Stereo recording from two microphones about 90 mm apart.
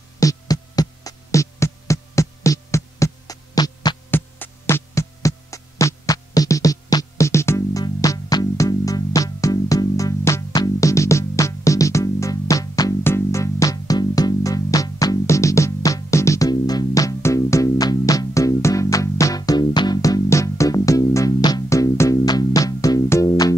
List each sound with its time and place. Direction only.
0.2 s hum: 40° left (ahead or behind)
4.1 s music: 25° left (ahead or behind); by 7.2 s 45° left (ahead or behind)
7.2 s music: 30° left (ahead or behind)
7.8 s music: 45° left (ahead or behind)
21.4 s music: 50° left (ahead or behind)
21.6 s music: 35° left (ahead or behind)